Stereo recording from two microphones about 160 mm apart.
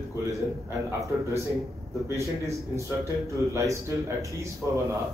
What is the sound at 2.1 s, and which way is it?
A man's voice, 20° right (ahead or behind).